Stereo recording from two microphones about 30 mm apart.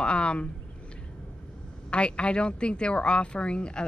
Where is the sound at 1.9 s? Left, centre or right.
Left.